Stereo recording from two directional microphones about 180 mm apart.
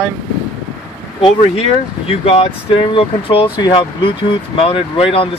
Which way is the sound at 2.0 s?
35° left (ahead or behind).